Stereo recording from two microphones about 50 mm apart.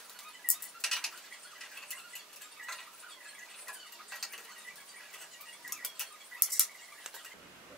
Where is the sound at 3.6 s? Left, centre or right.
Centre.